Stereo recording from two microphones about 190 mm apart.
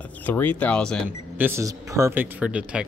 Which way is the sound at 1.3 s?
10° right (ahead or behind).